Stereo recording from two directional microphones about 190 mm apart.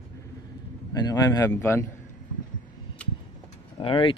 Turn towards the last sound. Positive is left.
turn(degrees=25)  # may be behind; listen again after turning